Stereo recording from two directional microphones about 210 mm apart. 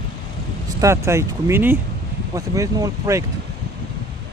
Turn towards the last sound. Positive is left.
turn(degrees=-15)  # may be behind; listen again after turning